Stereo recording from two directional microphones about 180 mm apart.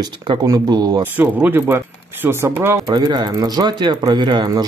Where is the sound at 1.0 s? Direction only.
10° right (ahead or behind).